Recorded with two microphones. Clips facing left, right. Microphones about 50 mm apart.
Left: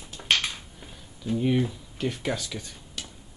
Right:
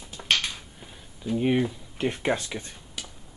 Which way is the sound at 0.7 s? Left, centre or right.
Centre.